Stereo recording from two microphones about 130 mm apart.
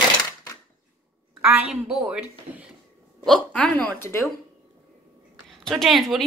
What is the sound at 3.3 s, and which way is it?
Speech, 5° left (ahead or behind).